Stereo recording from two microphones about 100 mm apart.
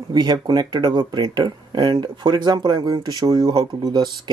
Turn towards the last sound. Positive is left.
turn(degrees=-45)  # may be behind; listen again after turning